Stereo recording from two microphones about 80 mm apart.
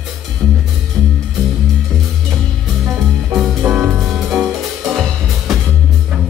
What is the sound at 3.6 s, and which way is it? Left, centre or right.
Music, centre.